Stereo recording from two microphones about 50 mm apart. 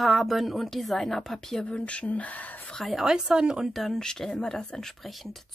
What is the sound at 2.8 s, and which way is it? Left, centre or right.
Speech, centre.